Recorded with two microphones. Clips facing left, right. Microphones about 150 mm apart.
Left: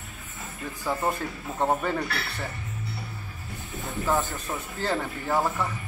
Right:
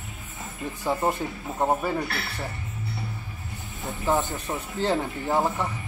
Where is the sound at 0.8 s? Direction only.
20° right (ahead or behind).